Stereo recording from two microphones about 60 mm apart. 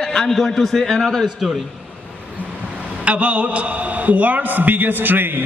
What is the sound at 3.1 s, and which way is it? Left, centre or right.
A man's voice, right.